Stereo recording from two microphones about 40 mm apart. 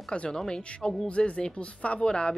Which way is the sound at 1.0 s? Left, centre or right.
Left.